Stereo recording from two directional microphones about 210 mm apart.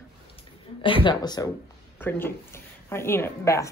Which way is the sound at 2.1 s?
10° left (ahead or behind).